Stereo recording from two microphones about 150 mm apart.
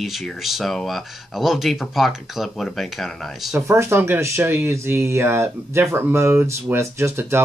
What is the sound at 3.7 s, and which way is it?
Speech, 15° right (ahead or behind).